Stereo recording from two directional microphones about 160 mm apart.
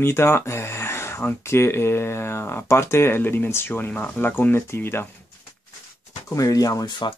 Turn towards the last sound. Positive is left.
turn(degrees=25)  # may be behind; listen again after turning